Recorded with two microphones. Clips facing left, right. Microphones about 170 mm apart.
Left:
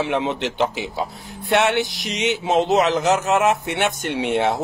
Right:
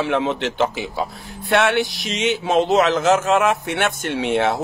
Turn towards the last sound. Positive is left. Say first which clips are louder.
# right 1 dB
turn(degrees=15)  # may be behind; listen again after turning